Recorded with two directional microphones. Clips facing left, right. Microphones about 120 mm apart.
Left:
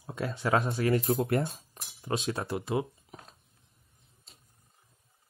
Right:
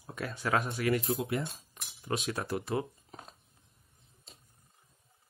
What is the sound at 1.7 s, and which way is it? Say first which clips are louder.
Speech: left 2 dB; 25° left (ahead or behind).